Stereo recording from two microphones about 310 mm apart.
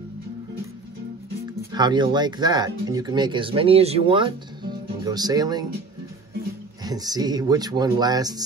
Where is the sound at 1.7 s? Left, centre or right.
Centre.